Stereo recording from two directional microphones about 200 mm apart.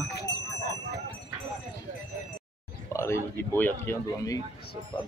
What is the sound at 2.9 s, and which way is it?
Speech, 15° left (ahead or behind).